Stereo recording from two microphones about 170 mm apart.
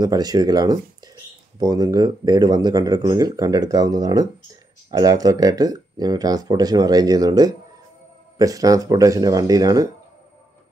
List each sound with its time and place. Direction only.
0.0 s speech: 25° right (ahead or behind)